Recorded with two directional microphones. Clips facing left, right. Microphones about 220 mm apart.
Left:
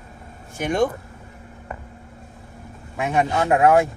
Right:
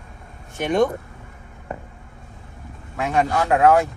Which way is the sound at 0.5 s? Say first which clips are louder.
Right 2 dB; centre (ahead or behind).